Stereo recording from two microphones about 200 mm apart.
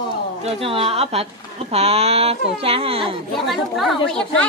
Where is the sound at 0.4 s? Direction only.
30° right (ahead or behind).